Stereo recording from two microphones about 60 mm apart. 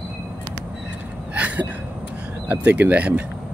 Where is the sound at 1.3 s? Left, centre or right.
Right.